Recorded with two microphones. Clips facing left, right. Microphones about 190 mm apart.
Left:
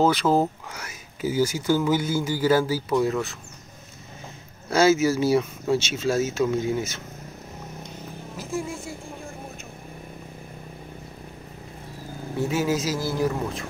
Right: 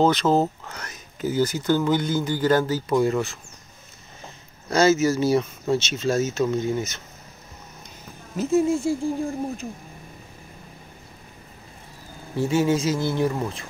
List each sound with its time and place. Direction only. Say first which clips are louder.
0.0 s speech: right 1 dB; 10° left (ahead or behind)
4.6 s speech: even; 10° left (ahead or behind)
8.4 s speech: right 11 dB; 25° right (ahead or behind)
12.4 s speech: right 3 dB; centre (ahead or behind)